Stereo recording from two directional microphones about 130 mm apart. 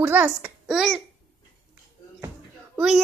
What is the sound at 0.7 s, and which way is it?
Speech, 5° right (ahead or behind).